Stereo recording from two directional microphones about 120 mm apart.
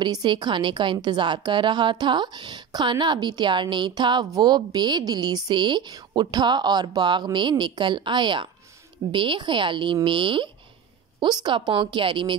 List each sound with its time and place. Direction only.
0.0 s a woman's voice: 40° right (ahead or behind)